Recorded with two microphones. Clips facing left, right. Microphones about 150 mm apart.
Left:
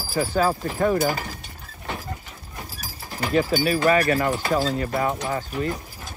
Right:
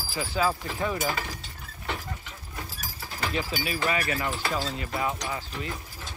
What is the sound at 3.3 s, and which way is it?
Speech, 45° left (ahead or behind).